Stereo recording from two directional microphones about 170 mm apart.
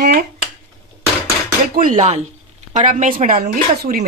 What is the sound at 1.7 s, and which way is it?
Speech, 50° right (ahead or behind).